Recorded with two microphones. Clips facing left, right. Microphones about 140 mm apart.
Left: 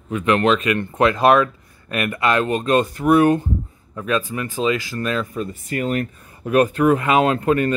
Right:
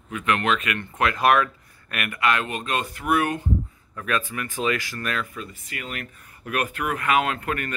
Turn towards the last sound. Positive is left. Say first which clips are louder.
# left 10 dB
turn(degrees=25)  # may be behind; listen again after turning